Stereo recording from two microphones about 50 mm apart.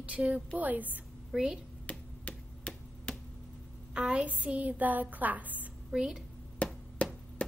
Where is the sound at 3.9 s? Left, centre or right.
Right.